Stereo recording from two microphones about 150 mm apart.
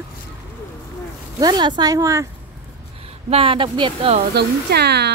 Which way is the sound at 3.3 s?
35° right (ahead or behind).